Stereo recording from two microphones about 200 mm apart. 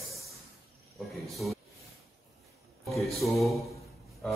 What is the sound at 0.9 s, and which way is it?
Speech, centre (ahead or behind).